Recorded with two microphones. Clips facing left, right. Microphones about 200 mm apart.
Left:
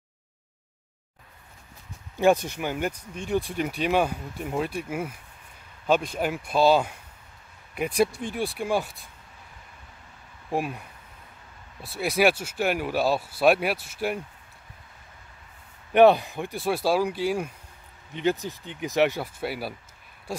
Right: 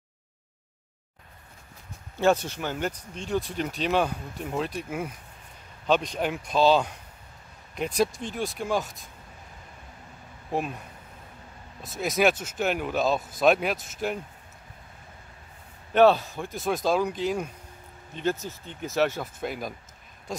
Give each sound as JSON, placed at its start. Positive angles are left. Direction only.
{"t": 2.1, "sound": "speech", "side_deg": 15}
{"t": 11.8, "sound": "speech", "side_deg": 10}
{"t": 15.9, "sound": "speech", "side_deg": 15}